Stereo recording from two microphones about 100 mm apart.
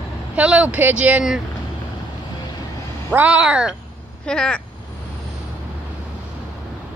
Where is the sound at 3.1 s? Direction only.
15° right (ahead or behind).